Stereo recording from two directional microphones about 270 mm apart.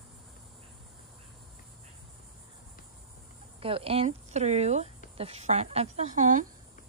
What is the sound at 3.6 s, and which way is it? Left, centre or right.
Speech, right.